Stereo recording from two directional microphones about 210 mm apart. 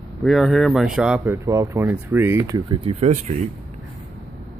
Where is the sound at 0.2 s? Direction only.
Centre (ahead or behind); by 3.4 s 35° right (ahead or behind).